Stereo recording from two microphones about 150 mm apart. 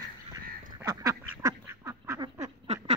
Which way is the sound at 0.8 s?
20° right (ahead or behind).